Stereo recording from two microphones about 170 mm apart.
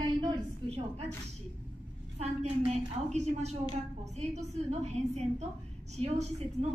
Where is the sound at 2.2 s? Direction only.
40° right (ahead or behind).